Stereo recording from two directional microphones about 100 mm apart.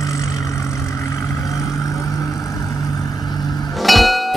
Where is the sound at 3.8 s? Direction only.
Centre (ahead or behind).